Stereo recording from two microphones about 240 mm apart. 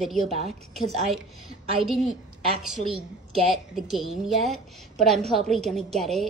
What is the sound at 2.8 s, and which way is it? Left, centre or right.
Speech, right.